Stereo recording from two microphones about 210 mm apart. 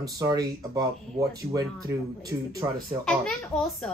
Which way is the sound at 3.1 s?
5° left (ahead or behind).